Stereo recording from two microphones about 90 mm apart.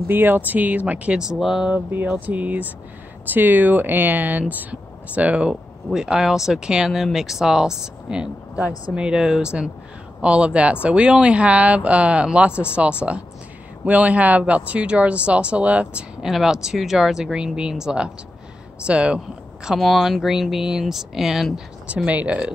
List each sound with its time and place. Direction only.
0.1 s speech: 20° right (ahead or behind); by 1.7 s 5° right (ahead or behind)
1.7 s speech: 25° right (ahead or behind); by 21.5 s 5° right (ahead or behind)
21.8 s speech: 15° right (ahead or behind)